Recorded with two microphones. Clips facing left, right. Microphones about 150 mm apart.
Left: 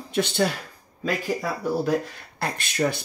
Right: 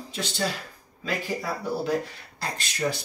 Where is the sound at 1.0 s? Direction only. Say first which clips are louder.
Left 4 dB; 45° left (ahead or behind).